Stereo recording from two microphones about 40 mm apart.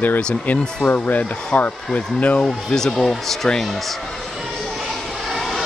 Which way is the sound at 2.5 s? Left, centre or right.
Centre.